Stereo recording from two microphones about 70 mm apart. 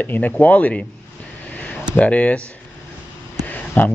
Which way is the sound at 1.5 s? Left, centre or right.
Left.